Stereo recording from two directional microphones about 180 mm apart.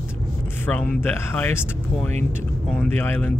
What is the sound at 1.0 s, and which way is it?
Speech, 10° left (ahead or behind).